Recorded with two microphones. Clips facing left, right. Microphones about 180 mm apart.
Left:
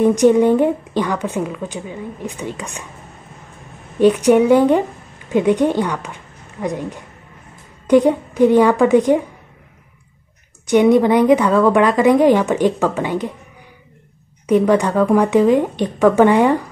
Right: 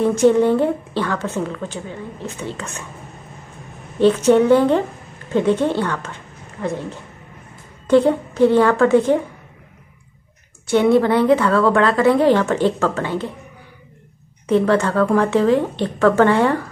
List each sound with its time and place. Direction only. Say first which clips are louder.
0.0 s a woman's voice: left 2 dB; 15° left (ahead or behind)
4.0 s a woman's voice: left 1 dB; 15° left (ahead or behind)
10.7 s a woman's voice: left 2 dB; 15° left (ahead or behind)
14.4 s a woman's voice: left 2 dB; 15° left (ahead or behind)